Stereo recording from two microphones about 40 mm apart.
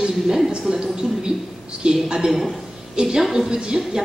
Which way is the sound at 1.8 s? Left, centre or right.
Right.